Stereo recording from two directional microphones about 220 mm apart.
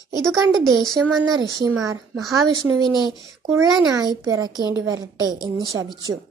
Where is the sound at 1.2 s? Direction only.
15° right (ahead or behind).